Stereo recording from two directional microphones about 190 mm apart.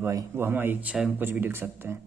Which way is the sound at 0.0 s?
15° right (ahead or behind).